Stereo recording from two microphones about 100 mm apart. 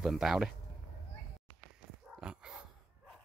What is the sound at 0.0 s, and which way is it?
Speech, 5° right (ahead or behind).